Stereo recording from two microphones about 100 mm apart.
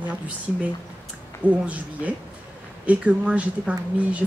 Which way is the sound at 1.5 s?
15° right (ahead or behind).